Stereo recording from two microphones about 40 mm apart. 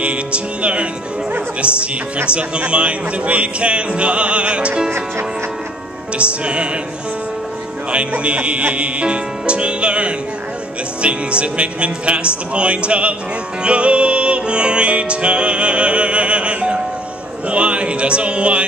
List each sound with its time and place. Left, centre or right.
0.0 s music: right
2.2 s music: right
6.1 s music: right
7.9 s music: right